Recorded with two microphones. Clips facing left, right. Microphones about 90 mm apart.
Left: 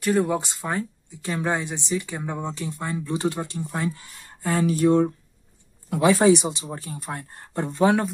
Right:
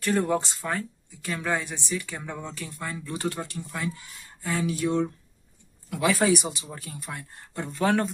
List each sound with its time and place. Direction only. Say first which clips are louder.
0.1 s speech: left 3 dB; 5° left (ahead or behind)
0.4 s speech: left 2 dB; 15° left (ahead or behind)
3.5 s speech: left 5 dB; 35° left (ahead or behind)
5.9 s speech: left 6 dB; 30° left (ahead or behind)
6.6 s speech: left 5 dB; 35° left (ahead or behind)
7.7 s speech: left 4 dB; 20° left (ahead or behind)